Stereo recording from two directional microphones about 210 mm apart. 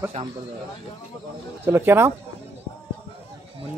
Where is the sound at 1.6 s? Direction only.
10° right (ahead or behind).